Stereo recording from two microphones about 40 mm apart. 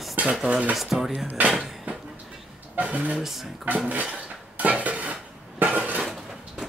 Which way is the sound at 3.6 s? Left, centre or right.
Right.